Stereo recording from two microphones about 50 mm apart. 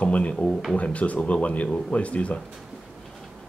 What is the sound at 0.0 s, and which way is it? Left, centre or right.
Speech, left.